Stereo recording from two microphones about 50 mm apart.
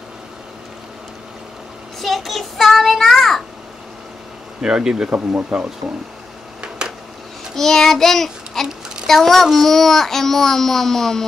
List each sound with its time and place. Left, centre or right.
2.0 s a child's voice: centre
4.6 s speech: centre
5.1 s speech: right
6.8 s a sound: centre
7.5 s a child's voice: centre